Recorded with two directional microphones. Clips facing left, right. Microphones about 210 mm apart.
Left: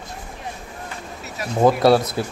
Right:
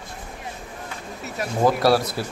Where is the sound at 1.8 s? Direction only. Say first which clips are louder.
Left 3 dB; 20° left (ahead or behind).